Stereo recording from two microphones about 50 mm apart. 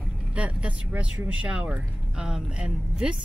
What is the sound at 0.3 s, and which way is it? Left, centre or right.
Speech, right.